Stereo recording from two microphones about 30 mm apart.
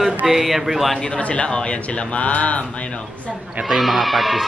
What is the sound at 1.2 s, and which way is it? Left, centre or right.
Speech, left.